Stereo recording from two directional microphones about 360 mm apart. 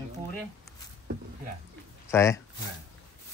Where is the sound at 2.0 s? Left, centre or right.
Centre.